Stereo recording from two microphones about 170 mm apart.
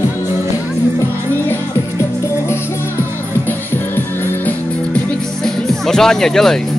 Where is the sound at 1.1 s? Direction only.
15° right (ahead or behind).